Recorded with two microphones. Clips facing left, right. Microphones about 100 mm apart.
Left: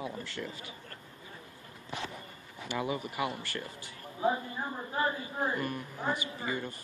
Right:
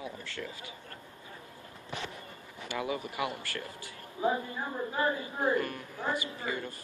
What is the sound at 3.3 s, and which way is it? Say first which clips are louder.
Speech: even; 15° left (ahead or behind).